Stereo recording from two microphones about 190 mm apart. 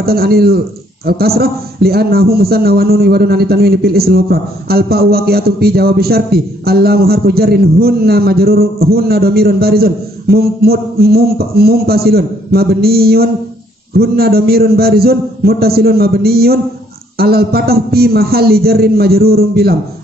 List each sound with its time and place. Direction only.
0.0 s a man's voice: 55° right (ahead or behind)